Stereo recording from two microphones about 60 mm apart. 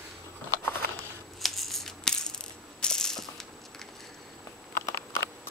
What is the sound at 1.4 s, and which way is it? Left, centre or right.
Rattle, centre.